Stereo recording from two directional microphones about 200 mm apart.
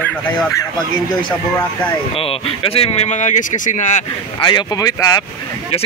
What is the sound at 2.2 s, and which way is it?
Speech, 30° left (ahead or behind).